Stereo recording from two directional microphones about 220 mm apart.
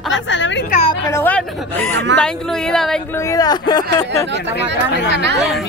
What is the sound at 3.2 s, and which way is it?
Speech, 15° left (ahead or behind).